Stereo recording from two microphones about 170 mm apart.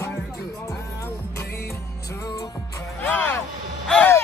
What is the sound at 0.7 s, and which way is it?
Music, 15° left (ahead or behind).